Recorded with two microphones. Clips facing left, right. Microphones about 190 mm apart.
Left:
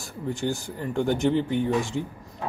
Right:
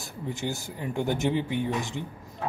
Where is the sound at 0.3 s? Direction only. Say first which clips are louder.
Left 5 dB; 5° right (ahead or behind).